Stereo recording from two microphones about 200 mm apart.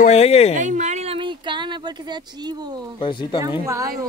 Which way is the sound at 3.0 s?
25° left (ahead or behind).